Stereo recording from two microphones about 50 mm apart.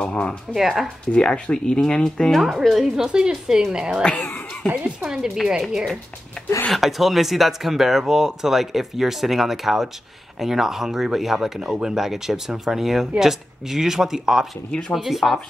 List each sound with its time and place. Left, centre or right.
0.0 s speech: centre
0.6 s speech: centre
0.8 s speech: centre
2.3 s speech: centre
4.0 s speech: left
5.0 s speech: centre
14.7 s speech: centre
15.0 s speech: centre